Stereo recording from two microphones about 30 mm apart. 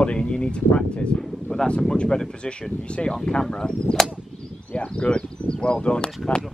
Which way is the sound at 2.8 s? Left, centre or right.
Left.